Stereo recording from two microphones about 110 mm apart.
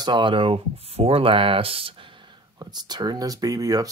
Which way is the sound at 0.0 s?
45° right (ahead or behind).